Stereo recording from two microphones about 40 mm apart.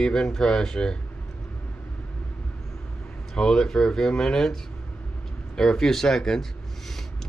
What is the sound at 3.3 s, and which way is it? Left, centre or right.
Speech, centre.